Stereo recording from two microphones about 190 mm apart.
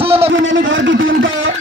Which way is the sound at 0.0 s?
30° right (ahead or behind).